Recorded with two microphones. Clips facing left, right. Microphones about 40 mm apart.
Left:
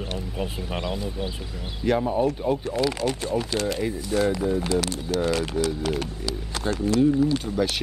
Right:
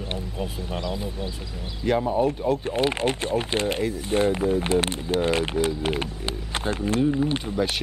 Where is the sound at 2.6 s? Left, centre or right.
Right.